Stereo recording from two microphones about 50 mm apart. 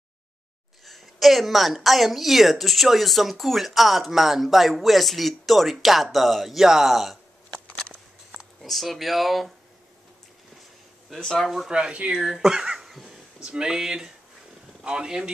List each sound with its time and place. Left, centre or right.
0.8 s a woman's voice: centre
8.6 s a woman's voice: centre
11.1 s speech: centre
11.7 s speech: right
12.2 s speech: centre
12.7 s a sound: centre
13.4 s speech: centre